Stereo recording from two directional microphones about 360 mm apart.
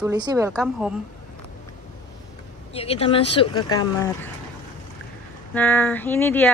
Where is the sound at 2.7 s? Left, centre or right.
Centre.